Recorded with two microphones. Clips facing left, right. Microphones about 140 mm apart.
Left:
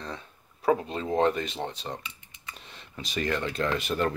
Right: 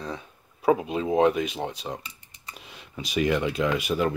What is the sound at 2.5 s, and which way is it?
Speech, 10° right (ahead or behind).